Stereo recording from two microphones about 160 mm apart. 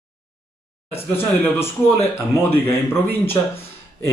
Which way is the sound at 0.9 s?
15° left (ahead or behind).